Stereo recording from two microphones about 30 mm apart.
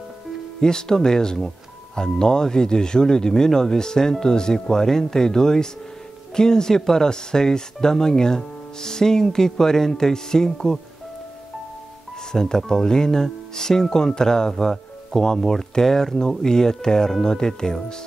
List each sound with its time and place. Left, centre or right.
0.6 s speech: left
12.3 s speech: left